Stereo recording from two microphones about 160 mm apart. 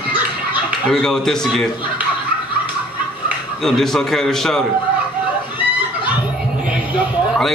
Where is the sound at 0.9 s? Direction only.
5° left (ahead or behind).